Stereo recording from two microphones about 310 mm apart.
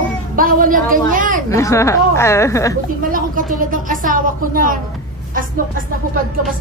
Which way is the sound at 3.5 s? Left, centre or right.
Right.